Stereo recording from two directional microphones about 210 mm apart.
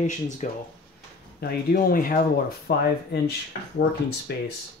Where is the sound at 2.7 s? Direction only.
50° left (ahead or behind).